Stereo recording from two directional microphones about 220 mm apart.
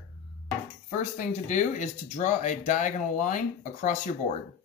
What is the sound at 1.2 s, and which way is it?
Speech, 35° left (ahead or behind).